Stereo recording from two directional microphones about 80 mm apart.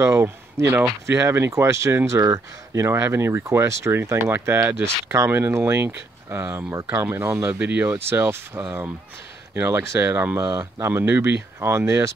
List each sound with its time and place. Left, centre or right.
0.0 s speech: right
7.5 s speech: right